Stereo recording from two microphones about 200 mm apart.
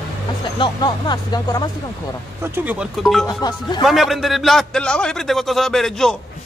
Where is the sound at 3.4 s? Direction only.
20° left (ahead or behind).